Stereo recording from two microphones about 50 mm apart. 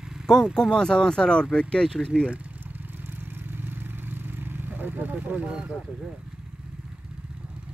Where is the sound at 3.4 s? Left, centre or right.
Right.